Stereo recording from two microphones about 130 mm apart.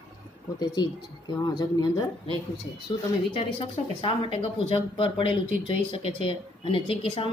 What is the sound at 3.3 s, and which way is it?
A woman's voice, 45° left (ahead or behind).